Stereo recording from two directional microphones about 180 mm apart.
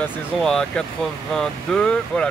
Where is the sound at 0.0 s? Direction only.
5° left (ahead or behind).